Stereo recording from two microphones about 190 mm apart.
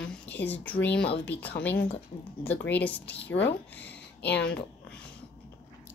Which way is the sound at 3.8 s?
65° left (ahead or behind).